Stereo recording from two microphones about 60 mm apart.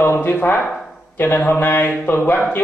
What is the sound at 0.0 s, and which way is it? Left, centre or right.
A man's voice, left.